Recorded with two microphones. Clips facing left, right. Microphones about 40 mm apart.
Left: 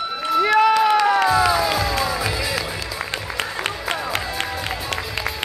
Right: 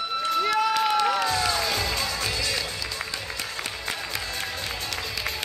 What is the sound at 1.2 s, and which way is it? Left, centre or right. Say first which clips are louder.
Music: left 8 dB; centre.